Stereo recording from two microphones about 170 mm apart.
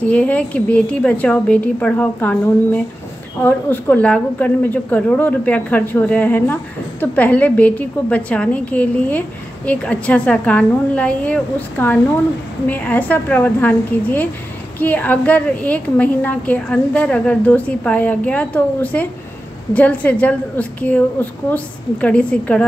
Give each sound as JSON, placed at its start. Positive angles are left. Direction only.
{"t": 0.0, "sound": "a woman's voice", "side_deg": 10}